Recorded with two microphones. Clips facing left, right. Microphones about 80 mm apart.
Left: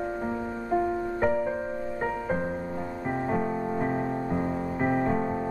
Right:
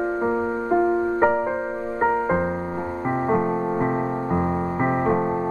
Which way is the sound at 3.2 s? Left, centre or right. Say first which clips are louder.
Right 7 dB; right.